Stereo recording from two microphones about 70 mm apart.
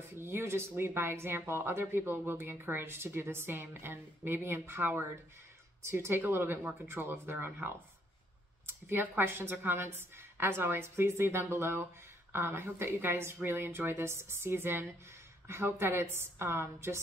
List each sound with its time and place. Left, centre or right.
0.2 s speech: right